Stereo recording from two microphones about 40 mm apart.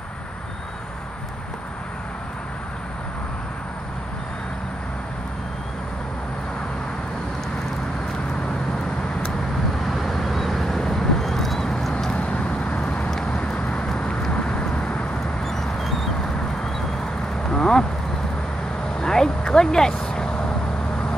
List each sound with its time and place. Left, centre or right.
9.8 s vehicle: centre
12.2 s vehicle: left
13.1 s vehicle: centre
15.4 s a sound: centre
17.5 s a sound: centre
18.9 s vehicle: centre